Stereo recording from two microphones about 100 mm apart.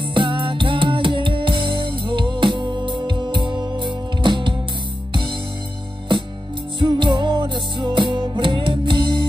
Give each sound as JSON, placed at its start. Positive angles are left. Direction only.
{"t": 0.1, "sound": "music", "side_deg": -55}
{"t": 6.8, "sound": "music", "side_deg": -55}